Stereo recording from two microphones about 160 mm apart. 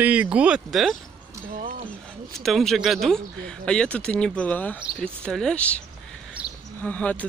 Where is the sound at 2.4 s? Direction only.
Centre (ahead or behind).